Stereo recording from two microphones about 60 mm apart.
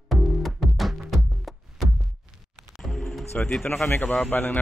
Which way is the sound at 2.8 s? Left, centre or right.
Centre.